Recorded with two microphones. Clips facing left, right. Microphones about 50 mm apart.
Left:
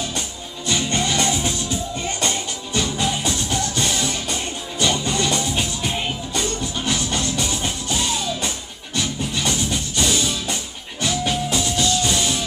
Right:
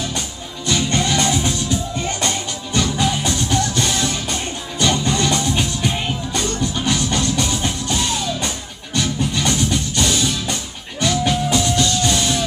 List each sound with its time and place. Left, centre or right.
0.7 s music: centre